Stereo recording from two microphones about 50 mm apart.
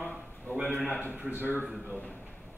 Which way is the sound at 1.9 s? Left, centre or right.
Left.